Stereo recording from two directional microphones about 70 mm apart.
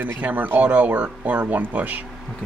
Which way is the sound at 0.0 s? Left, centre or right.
Right.